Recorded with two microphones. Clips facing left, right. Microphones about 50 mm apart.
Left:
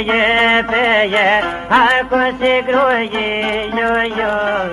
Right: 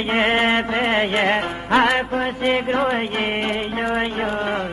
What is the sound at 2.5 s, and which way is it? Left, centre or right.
Mantra, left.